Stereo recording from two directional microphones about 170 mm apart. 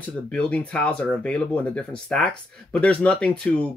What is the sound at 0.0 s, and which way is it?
Speech, 5° left (ahead or behind).